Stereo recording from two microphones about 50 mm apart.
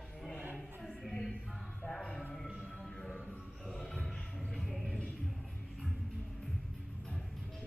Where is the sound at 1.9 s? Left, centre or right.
Centre.